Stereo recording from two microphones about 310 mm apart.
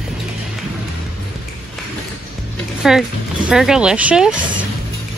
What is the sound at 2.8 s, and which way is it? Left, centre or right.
Speech, centre.